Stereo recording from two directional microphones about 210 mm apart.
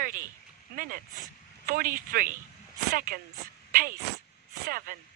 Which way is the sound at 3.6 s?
40° right (ahead or behind).